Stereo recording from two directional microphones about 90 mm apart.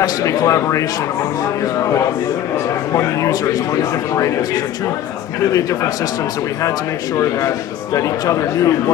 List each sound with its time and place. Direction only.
0.0 s speech: 40° left (ahead or behind)
2.9 s speech: 35° left (ahead or behind)
7.2 s speech: 35° left (ahead or behind)